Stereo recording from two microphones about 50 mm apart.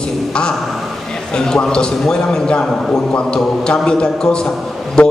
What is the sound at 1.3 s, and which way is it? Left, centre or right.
A man's voice, centre.